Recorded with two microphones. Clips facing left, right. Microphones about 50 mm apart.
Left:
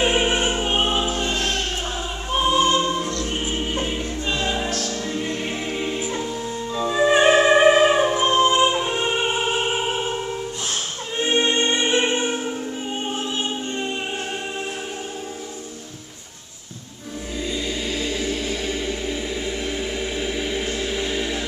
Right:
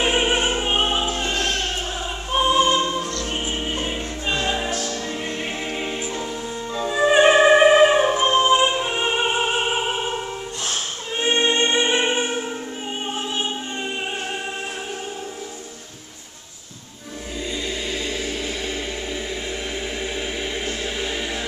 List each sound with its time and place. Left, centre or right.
0.0 s opera: centre
2.3 s opera: centre
3.0 s music: left
3.8 s music: centre
17.9 s a sound: centre
20.2 s a sound: centre